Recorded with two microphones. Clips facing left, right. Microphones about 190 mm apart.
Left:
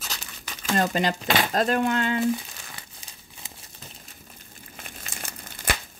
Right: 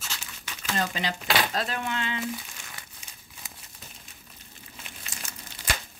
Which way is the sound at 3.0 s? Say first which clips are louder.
Left 2 dB; 35° left (ahead or behind).